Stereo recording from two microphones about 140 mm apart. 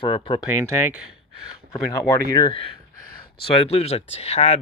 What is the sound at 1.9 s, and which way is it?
Speech, 25° left (ahead or behind).